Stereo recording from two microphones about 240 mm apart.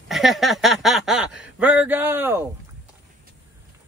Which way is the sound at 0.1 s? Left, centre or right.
Centre.